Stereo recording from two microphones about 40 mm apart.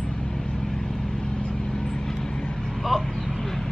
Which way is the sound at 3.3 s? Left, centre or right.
Centre.